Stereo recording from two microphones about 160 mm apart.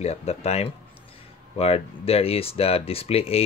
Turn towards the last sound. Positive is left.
turn(degrees=40)  # may be behind; listen again after turning